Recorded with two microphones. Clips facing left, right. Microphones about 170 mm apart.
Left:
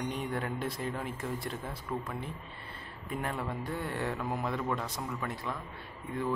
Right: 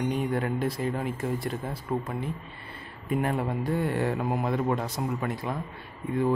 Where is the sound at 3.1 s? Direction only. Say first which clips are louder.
Right 8 dB; 60° right (ahead or behind).